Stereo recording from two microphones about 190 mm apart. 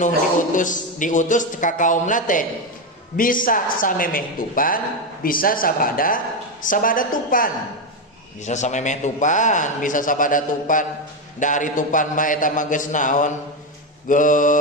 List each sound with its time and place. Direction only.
0.0 s a man's voice: 45° left (ahead or behind)